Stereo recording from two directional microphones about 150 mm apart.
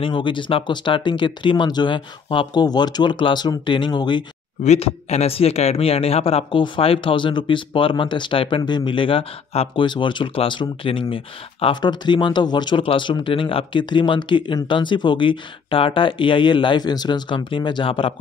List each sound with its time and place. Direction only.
0.0 s speech: 30° left (ahead or behind)
4.6 s speech: 45° left (ahead or behind)